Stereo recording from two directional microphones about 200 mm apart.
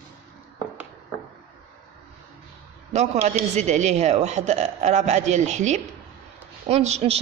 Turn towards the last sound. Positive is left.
turn(degrees=-35)  # may be behind; listen again after turning